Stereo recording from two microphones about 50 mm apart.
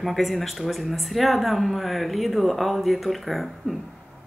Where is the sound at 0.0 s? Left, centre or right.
Centre.